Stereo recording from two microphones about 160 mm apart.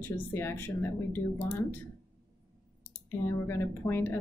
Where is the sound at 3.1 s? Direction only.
15° left (ahead or behind).